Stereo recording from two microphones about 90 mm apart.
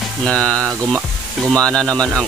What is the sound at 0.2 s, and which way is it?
Speech, 10° left (ahead or behind).